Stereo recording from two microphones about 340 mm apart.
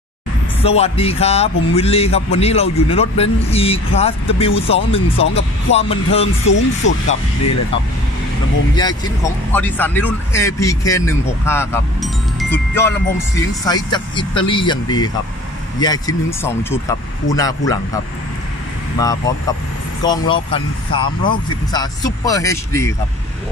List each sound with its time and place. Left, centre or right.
0.6 s speech: centre
6.4 s speech: left
9.5 s speech: centre
18.9 s speech: centre